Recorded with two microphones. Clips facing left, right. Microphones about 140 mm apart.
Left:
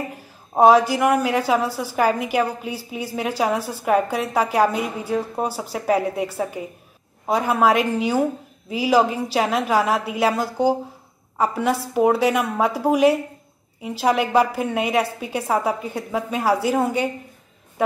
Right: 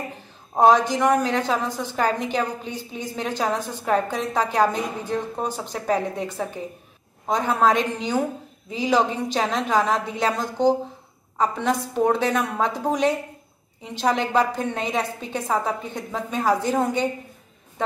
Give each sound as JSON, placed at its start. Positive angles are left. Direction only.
{"t": 0.6, "sound": "a woman's voice", "side_deg": 10}
{"t": 17.8, "sound": "music", "side_deg": 10}